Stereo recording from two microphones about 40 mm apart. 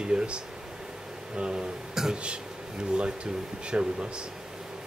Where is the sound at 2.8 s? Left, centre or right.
Right.